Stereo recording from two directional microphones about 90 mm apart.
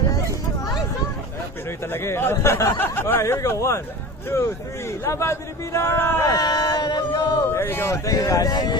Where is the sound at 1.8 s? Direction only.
25° left (ahead or behind).